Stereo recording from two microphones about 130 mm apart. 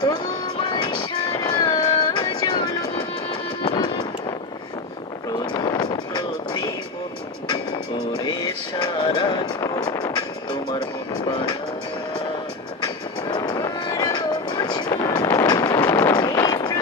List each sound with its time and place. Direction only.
0.7 s music: 35° left (ahead or behind)
5.4 s vehicle: 35° left (ahead or behind)
8.8 s vehicle: 35° left (ahead or behind)
10.7 s music: 35° left (ahead or behind)
12.8 s vehicle: 30° left (ahead or behind)
15.9 s a sound: 30° left (ahead or behind)